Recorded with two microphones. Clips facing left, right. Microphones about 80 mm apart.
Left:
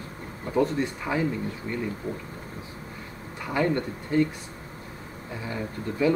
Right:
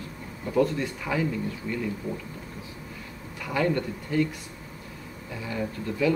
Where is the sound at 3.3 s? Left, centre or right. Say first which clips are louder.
Left 1 dB; left.